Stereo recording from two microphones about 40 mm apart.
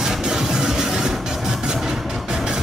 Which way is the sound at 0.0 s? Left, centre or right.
Centre.